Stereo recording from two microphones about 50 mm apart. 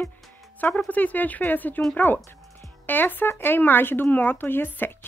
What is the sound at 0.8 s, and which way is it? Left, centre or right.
Speech, left.